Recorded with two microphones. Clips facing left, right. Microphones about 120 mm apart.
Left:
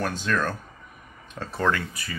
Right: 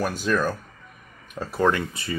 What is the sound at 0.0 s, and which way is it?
Speech, 10° right (ahead or behind).